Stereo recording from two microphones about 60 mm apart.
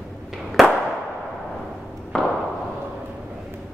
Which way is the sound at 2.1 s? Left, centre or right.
Centre.